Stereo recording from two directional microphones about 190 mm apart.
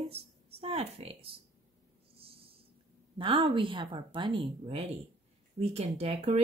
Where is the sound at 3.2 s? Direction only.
25° right (ahead or behind).